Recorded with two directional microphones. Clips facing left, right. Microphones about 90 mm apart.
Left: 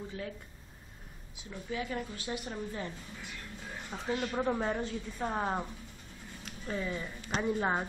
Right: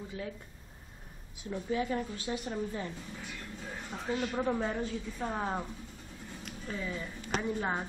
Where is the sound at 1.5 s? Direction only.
30° right (ahead or behind).